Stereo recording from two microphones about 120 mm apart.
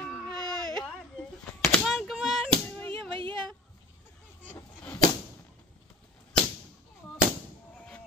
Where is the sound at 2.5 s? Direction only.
15° left (ahead or behind).